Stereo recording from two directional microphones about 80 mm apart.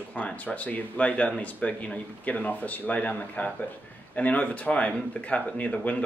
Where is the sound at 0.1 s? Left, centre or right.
Centre.